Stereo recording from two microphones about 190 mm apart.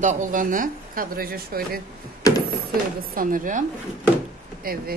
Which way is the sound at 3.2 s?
45° right (ahead or behind).